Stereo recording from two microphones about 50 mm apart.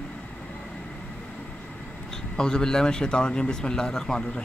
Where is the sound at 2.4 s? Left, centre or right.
Centre.